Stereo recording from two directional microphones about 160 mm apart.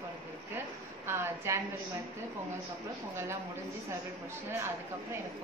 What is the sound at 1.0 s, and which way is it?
Speech, 15° right (ahead or behind).